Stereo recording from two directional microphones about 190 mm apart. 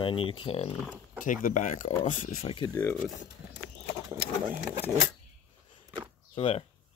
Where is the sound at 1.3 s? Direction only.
45° left (ahead or behind).